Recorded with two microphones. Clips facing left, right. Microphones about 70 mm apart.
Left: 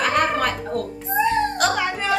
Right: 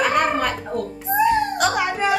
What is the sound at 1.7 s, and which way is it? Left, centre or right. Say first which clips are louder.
Music: right 2 dB; centre.